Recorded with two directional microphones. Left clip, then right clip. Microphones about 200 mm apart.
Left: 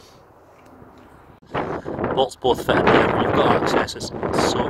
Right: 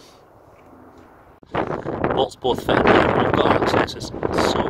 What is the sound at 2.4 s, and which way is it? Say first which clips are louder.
Speech: right 1 dB; centre (ahead or behind).